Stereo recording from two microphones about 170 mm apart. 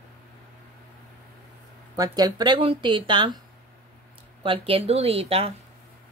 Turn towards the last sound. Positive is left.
turn(degrees=-35)  # may be behind; listen again after turning